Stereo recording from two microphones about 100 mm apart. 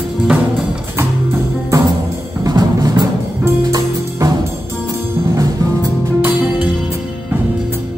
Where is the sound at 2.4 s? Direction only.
40° right (ahead or behind).